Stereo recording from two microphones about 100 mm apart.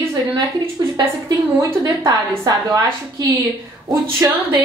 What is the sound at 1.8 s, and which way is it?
Speech, 30° right (ahead or behind).